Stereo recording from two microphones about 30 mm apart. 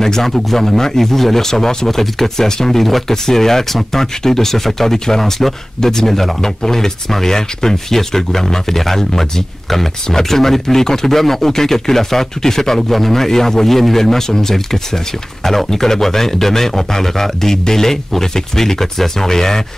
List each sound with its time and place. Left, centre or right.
0.0 s a man's voice: centre
14.1 s a man's voice: centre